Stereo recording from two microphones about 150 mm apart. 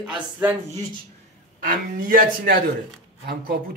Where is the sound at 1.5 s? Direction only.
70° right (ahead or behind).